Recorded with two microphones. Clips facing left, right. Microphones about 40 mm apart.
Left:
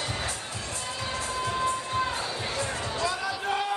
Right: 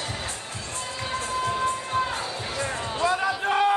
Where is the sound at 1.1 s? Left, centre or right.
Right.